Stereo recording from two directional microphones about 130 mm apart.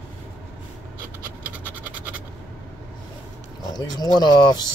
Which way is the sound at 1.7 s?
10° right (ahead or behind).